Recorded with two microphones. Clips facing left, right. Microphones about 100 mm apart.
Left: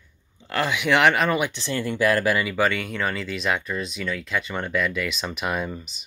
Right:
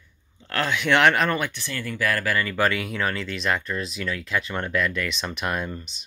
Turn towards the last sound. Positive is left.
turn(degrees=5)  # may be behind; listen again after turning